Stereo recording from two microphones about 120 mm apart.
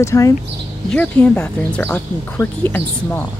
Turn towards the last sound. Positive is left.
turn(degrees=15)  # may be behind; listen again after turning